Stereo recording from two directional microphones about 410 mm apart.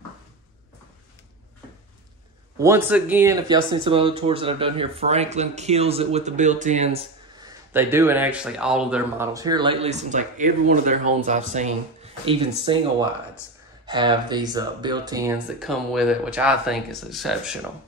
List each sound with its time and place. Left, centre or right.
2.6 s speech: centre
13.8 s speech: centre